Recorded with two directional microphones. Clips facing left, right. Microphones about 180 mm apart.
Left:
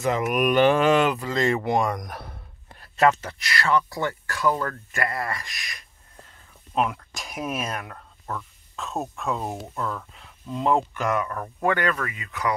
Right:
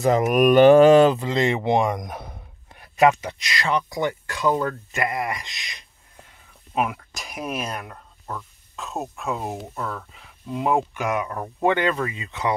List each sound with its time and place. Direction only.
0.0 s speech: 40° right (ahead or behind); by 5.9 s 20° right (ahead or behind)
6.7 s speech: 5° right (ahead or behind); by 12.5 s 25° right (ahead or behind)